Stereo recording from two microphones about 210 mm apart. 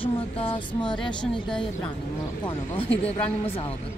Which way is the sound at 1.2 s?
5° left (ahead or behind).